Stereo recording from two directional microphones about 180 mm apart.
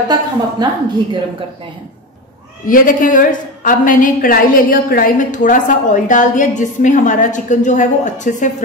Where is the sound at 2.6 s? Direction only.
50° left (ahead or behind).